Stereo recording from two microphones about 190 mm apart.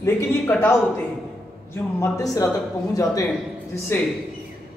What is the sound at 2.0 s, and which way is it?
Speech, 15° left (ahead or behind).